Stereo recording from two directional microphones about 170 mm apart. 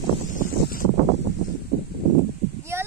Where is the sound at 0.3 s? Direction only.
55° left (ahead or behind).